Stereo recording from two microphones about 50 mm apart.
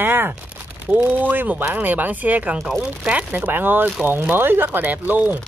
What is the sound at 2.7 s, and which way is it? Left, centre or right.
Speech, centre.